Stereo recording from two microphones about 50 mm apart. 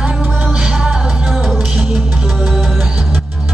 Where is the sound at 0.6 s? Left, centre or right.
Centre.